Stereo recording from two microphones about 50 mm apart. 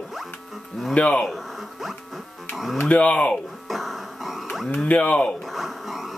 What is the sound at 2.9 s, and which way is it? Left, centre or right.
Speech, left.